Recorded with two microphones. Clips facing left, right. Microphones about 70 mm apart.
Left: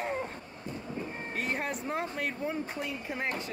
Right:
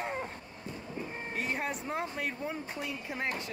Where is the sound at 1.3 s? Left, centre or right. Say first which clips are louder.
Left 1 dB; centre.